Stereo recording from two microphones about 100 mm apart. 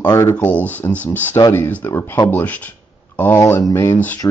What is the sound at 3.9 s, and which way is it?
Speech, 15° left (ahead or behind).